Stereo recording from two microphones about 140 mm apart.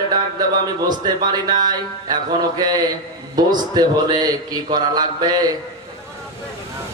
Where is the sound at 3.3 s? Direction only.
30° right (ahead or behind).